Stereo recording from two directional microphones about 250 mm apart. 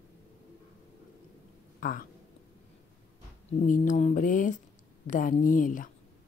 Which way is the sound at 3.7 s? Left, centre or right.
Left.